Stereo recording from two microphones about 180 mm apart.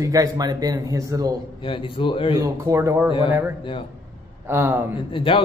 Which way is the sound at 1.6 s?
30° left (ahead or behind).